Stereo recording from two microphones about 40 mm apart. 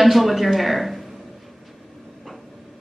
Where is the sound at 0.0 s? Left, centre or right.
Centre.